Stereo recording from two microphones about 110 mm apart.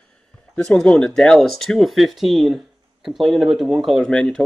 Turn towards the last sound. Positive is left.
turn(degrees=5)  # may be behind; listen again after turning